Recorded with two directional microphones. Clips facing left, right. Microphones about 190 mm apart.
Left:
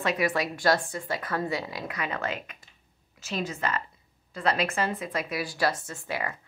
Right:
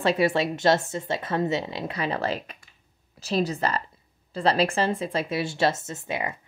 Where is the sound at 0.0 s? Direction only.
30° right (ahead or behind).